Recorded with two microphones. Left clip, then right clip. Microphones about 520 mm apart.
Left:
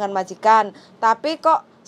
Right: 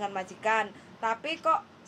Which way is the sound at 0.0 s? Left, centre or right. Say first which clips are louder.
Left 12 dB; left.